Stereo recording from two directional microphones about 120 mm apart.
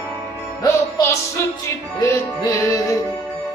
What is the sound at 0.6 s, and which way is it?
Music, 25° left (ahead or behind).